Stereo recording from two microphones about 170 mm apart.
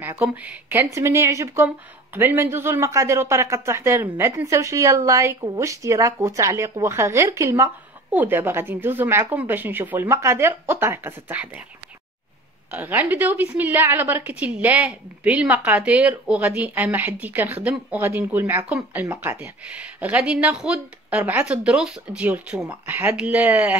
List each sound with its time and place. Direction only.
0.0 s speech: 10° right (ahead or behind)
12.7 s speech: 10° right (ahead or behind)